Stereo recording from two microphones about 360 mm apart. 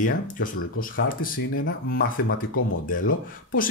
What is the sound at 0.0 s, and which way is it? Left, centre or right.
Speech, left.